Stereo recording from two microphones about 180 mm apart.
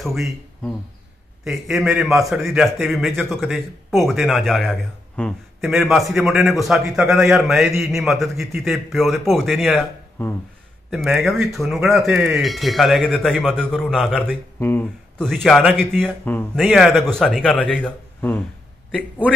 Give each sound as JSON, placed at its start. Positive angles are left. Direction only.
{"t": 0.0, "sound": "speech", "side_deg": 0}
{"t": 18.9, "sound": "speech", "side_deg": -5}